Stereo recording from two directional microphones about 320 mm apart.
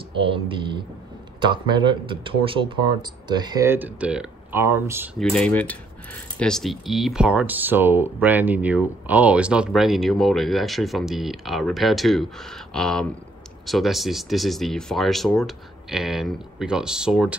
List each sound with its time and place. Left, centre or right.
0.1 s speech: centre